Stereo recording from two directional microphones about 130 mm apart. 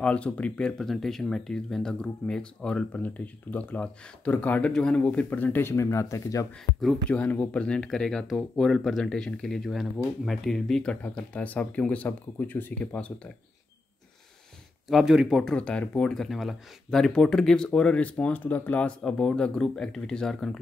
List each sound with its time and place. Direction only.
0.0 s speech: 10° left (ahead or behind)
7.1 s speech: 10° left (ahead or behind)
14.9 s speech: 5° right (ahead or behind)